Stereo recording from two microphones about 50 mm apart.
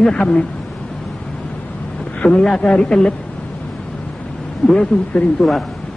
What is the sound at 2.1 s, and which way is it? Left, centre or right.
A man's voice, centre.